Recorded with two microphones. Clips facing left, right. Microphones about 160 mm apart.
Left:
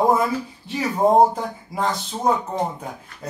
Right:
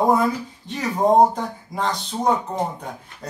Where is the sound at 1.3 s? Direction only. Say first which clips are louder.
Even; 5° left (ahead or behind).